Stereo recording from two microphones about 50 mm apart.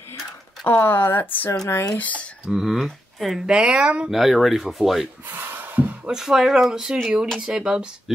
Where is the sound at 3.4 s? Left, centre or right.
Centre.